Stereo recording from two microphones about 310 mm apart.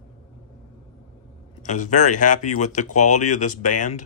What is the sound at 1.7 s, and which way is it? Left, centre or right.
Speech, left.